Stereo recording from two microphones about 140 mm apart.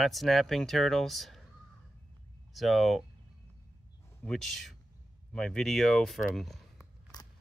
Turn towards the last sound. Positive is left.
turn(degrees=30)  # may be behind; listen again after turning